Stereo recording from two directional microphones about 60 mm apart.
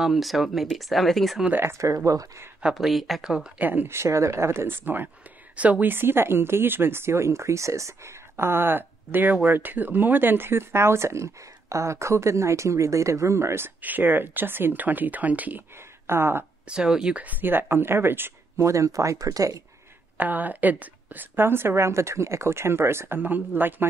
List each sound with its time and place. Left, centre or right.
0.0 s speech: centre
1.6 s speech: right
2.0 s speech: right
2.7 s speech: centre
3.5 s speech: right
3.9 s speech: right
13.7 s speech: right
15.7 s speech: right
16.6 s speech: centre
17.2 s speech: right
18.7 s speech: right
20.2 s speech: right